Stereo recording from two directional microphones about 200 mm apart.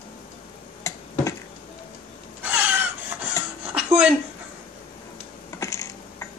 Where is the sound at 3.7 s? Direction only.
5° right (ahead or behind).